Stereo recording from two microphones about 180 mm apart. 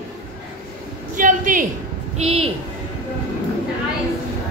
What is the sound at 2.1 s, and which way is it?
Speech, 35° right (ahead or behind).